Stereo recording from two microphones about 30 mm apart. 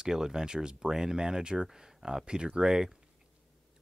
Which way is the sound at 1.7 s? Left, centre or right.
Centre.